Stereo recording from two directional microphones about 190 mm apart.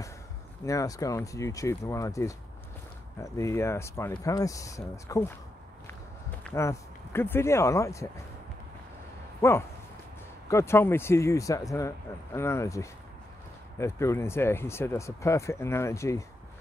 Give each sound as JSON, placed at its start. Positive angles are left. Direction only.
{"t": 0.7, "sound": "speech", "side_deg": 20}
{"t": 6.5, "sound": "speech", "side_deg": 15}
{"t": 9.4, "sound": "speech", "side_deg": 15}